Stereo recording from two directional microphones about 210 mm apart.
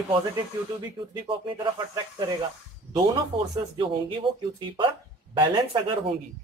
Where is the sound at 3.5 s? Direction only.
25° right (ahead or behind).